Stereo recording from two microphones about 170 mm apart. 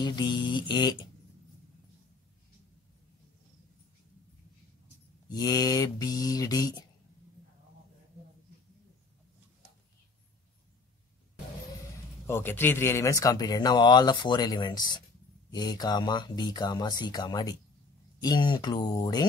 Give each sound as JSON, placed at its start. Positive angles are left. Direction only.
{"t": 0.0, "sound": "speech", "side_deg": 25}
{"t": 5.3, "sound": "speech", "side_deg": 20}
{"t": 12.3, "sound": "speech", "side_deg": 15}